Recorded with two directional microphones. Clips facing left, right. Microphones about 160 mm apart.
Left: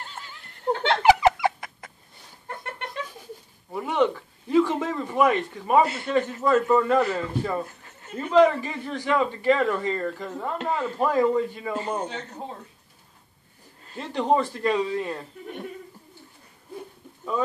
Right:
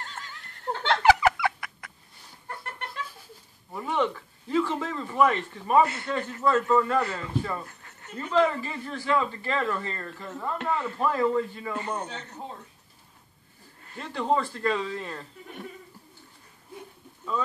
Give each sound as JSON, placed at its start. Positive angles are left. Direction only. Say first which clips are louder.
{"t": 0.0, "sound": "a sound", "louder": "left 1 dB", "side_deg": 15}
{"t": 3.8, "sound": "a man's voice", "louder": "left 4 dB", "side_deg": 15}
{"t": 13.8, "sound": "a man's voice", "louder": "left 3 dB", "side_deg": 20}